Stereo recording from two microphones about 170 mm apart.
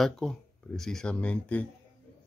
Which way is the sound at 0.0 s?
5° left (ahead or behind).